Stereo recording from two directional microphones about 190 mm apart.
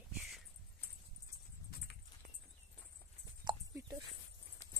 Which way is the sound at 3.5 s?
20° right (ahead or behind).